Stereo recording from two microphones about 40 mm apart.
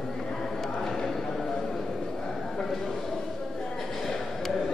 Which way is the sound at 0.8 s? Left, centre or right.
Centre.